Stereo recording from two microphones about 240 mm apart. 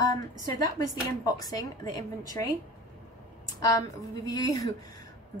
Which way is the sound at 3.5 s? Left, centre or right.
Centre.